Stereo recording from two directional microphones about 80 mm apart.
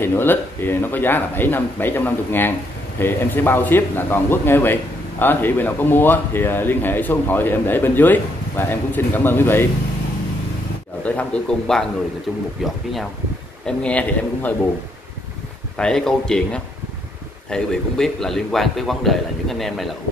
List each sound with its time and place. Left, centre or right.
0.0 s a man's voice: left
11.1 s a man's voice: centre
12.3 s a man's voice: centre
13.7 s a man's voice: centre
15.7 s a man's voice: centre